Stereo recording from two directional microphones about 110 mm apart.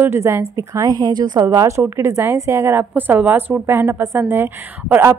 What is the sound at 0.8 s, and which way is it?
A woman's voice, 40° right (ahead or behind).